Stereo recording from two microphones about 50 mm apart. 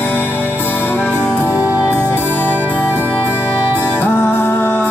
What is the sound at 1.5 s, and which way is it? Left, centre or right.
Music, right.